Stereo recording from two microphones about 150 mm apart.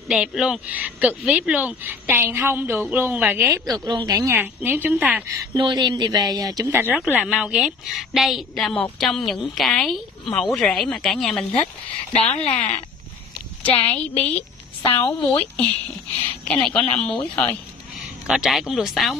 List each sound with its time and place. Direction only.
0.1 s a woman's voice: 5° right (ahead or behind); by 4.4 s 25° right (ahead or behind)
4.4 s speech: 10° right (ahead or behind)
5.3 s a woman's voice: 25° right (ahead or behind); by 11.6 s centre (ahead or behind)
12.3 s speech: 45° left (ahead or behind)
13.6 s a woman's voice: 10° left (ahead or behind)
14.8 s a woman's voice: 30° left (ahead or behind)
15.3 s a woman's voice: 10° left (ahead or behind)
17.9 s speech: 5° right (ahead or behind)